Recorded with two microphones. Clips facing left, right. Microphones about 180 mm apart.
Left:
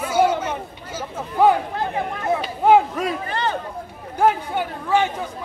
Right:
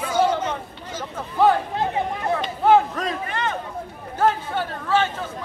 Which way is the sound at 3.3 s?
35° left (ahead or behind).